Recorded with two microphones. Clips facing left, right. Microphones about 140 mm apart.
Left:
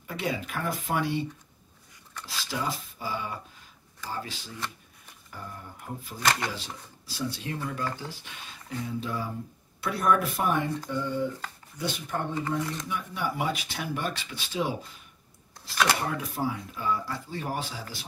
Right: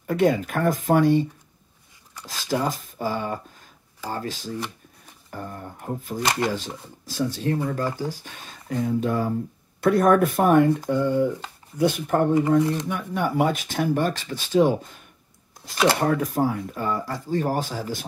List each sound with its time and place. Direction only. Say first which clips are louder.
0.0 s speech: right 11 dB; 50° right (ahead or behind)
2.2 s speech: right 7 dB; 45° right (ahead or behind)
12.4 s speech: right 11 dB; 20° right (ahead or behind)
12.7 s speech: right 7 dB; 50° right (ahead or behind)
16.0 s speech: right 9 dB; 45° right (ahead or behind)